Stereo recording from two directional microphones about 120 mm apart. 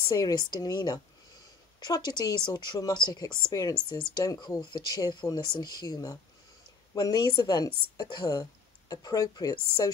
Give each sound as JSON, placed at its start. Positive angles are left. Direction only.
{"t": 0.1, "sound": "a woman's voice", "side_deg": 30}